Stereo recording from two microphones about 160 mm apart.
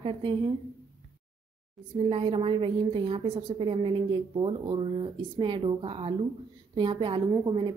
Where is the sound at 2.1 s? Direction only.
35° right (ahead or behind).